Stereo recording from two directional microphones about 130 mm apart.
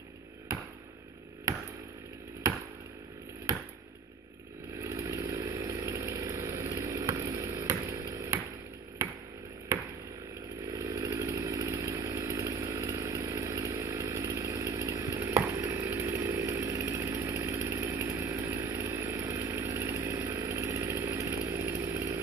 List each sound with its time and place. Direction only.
4.8 s chainsaw: 25° right (ahead or behind)
10.7 s chainsaw: 25° right (ahead or behind)